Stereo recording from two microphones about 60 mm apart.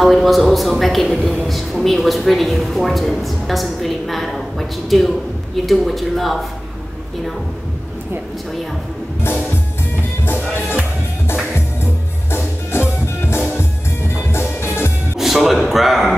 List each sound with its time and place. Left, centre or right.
0.0 s a woman's voice: centre
9.2 s music: left
11.5 s music: left
15.1 s a man's voice: centre